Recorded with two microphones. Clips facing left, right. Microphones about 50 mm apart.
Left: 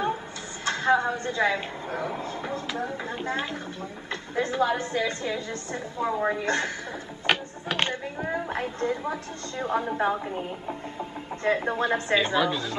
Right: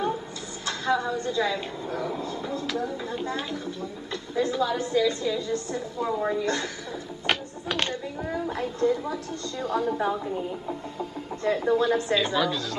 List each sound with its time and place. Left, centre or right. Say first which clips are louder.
0.7 s a woman's voice: left 3 dB; left
7.2 s music: left 2 dB; left
8.3 s a woman's voice: even; left